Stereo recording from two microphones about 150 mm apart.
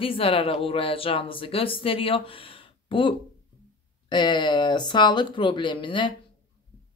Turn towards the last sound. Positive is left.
turn(degrees=30)  # may be behind; listen again after turning